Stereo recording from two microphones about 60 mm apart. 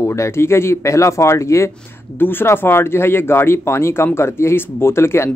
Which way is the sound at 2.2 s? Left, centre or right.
Left.